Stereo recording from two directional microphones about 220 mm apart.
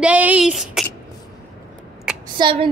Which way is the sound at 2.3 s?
20° right (ahead or behind).